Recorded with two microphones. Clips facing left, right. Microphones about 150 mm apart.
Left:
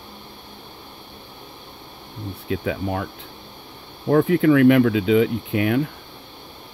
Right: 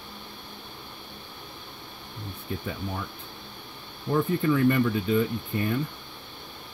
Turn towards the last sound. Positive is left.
turn(degrees=85)